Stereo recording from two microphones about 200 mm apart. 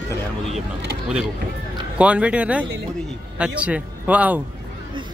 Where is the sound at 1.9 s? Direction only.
5° right (ahead or behind).